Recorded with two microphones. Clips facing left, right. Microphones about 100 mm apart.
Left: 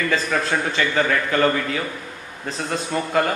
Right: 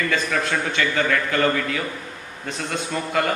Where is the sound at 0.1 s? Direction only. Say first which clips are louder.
Left 1 dB; 30° left (ahead or behind).